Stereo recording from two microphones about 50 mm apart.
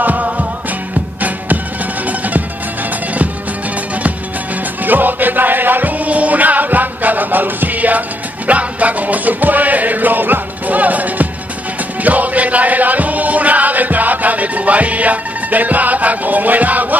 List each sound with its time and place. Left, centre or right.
0.0 s music: right
2.0 s music: right
4.8 s music: right